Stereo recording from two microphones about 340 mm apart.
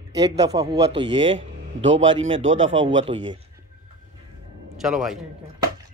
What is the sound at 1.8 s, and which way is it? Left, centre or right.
Speech, right.